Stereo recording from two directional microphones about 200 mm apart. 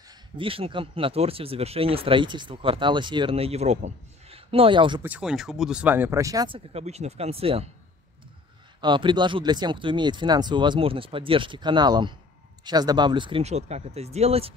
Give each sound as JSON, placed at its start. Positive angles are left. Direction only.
{"t": 0.1, "sound": "speech", "side_deg": -25}
{"t": 5.0, "sound": "speech", "side_deg": -5}
{"t": 8.8, "sound": "speech", "side_deg": -25}